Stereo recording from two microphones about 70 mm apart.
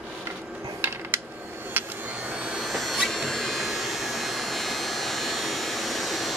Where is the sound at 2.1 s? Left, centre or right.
Centre.